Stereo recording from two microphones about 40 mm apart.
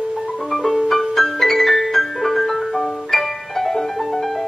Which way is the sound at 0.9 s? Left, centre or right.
Centre.